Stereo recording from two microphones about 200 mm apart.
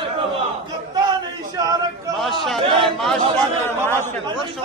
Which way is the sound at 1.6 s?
20° right (ahead or behind).